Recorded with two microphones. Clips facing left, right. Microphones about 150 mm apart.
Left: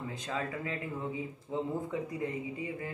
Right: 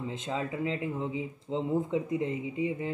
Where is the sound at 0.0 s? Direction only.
20° right (ahead or behind).